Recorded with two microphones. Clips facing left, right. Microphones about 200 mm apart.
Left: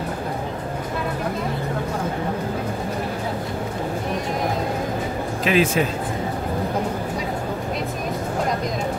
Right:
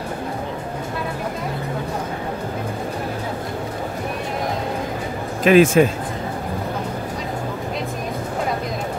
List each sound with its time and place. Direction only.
5.4 s speech: 50° right (ahead or behind)